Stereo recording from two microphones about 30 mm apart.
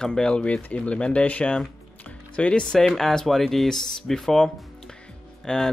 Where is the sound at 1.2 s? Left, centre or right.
Left.